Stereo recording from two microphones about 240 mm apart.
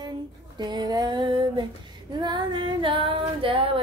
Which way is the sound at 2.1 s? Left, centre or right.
Centre.